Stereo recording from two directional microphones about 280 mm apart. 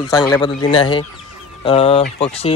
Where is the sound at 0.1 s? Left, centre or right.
Centre.